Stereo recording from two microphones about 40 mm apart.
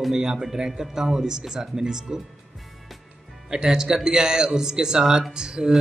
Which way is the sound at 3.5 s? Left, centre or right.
Centre.